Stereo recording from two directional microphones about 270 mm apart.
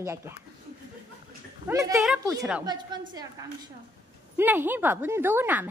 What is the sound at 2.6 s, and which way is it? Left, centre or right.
A woman's voice, centre.